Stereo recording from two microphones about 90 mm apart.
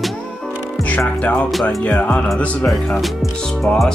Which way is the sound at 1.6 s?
15° left (ahead or behind).